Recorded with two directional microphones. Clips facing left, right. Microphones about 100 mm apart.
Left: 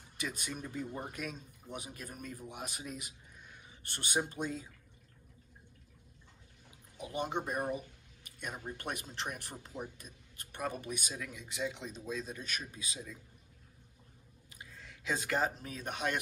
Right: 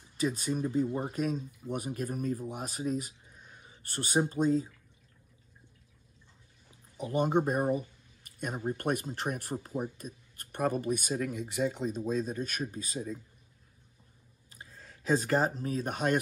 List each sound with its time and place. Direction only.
0.2 s speech: 35° right (ahead or behind)
1.1 s speech: 50° right (ahead or behind)
7.0 s speech: 45° right (ahead or behind)
7.7 s a sound: 45° right (ahead or behind)
8.6 s speech: 50° right (ahead or behind)
14.5 s speech: 40° right (ahead or behind)